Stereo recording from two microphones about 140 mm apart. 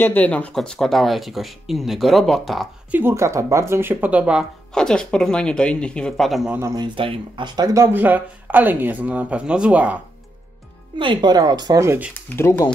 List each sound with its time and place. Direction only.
0.0 s speech: 10° left (ahead or behind)
2.9 s speech: 15° right (ahead or behind)
4.7 s speech: 5° left (ahead or behind)
6.7 s speech: 35° right (ahead or behind); by 9.9 s 10° right (ahead or behind)
11.0 s a woman's voice: 35° right (ahead or behind)
12.1 s speech: 15° left (ahead or behind)